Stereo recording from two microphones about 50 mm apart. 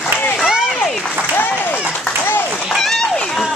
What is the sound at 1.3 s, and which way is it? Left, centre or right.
Applause, left.